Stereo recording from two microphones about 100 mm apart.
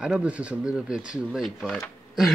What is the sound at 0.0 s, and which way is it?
Speech, 10° right (ahead or behind).